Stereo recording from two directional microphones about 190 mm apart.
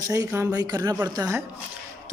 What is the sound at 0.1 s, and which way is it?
A woman's voice, 15° right (ahead or behind).